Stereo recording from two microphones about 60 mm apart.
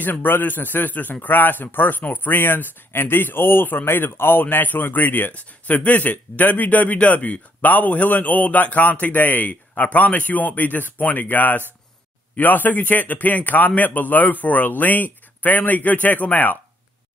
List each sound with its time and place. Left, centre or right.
0.0 s a man's voice: left